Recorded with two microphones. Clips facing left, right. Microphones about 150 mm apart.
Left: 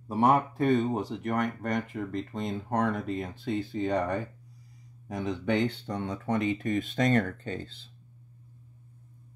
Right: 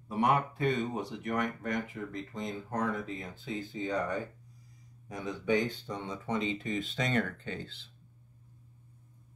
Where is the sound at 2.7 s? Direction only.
75° left (ahead or behind); by 7.7 s 35° left (ahead or behind).